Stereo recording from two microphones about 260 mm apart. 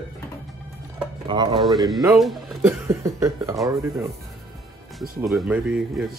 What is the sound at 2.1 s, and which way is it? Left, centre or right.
Speech, centre.